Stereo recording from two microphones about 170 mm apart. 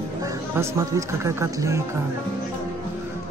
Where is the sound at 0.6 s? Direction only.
15° right (ahead or behind).